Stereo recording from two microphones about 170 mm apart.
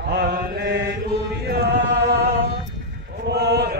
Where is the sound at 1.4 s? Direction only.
70° right (ahead or behind).